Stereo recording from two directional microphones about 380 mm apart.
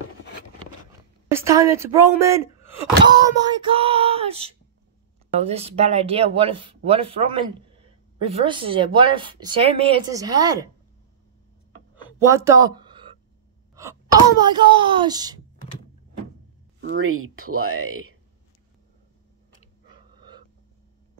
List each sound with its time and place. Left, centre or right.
1.3 s speech: centre
12.3 s a sound: centre
13.7 s speech: centre
16.8 s speech: right